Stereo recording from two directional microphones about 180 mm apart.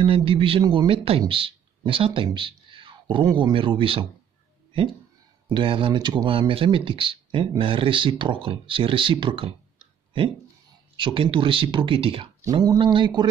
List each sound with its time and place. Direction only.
0.0 s speech: 30° right (ahead or behind)
5.5 s speech: 30° right (ahead or behind)
11.0 s speech: 25° right (ahead or behind)